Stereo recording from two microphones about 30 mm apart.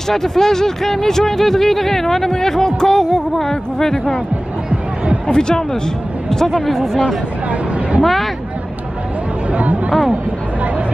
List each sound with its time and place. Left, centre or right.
0.1 s speech: centre
5.3 s speech: left
6.4 s speech: centre
8.0 s speech: centre
9.5 s speech: right